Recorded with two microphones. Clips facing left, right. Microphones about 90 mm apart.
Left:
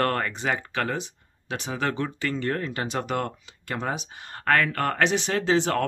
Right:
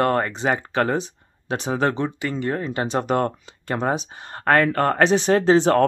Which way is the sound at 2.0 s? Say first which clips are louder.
Right 3 dB; 20° right (ahead or behind).